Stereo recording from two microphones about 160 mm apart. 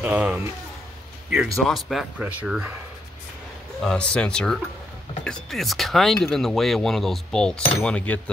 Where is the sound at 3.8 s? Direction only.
5° left (ahead or behind).